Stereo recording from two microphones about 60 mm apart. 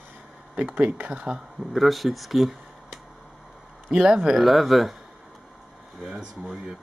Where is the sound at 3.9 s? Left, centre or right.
Centre.